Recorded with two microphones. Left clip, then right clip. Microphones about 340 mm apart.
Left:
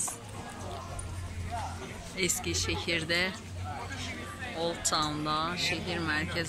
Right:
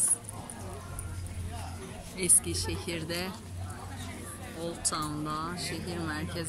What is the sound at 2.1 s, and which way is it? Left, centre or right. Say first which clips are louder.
Speech: left 1 dB; centre.